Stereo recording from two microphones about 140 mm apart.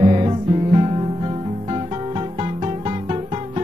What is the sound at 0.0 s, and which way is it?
Music, 35° right (ahead or behind).